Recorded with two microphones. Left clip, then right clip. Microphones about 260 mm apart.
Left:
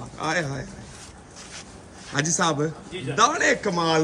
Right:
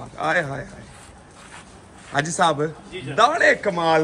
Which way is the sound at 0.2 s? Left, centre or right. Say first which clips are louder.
Right 4 dB; centre.